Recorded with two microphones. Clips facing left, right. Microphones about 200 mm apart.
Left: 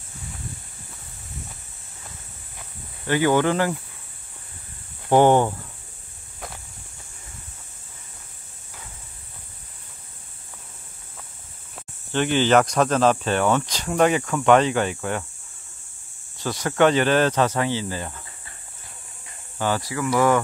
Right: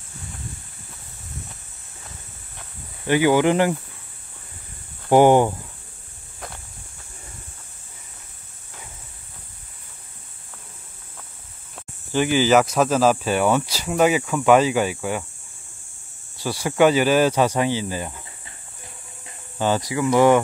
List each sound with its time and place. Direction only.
3.1 s speech: 10° right (ahead or behind)
5.1 s speech: 10° right (ahead or behind)
11.7 s speech: 5° right (ahead or behind)
16.3 s speech: 10° right (ahead or behind)
19.6 s speech: 20° right (ahead or behind)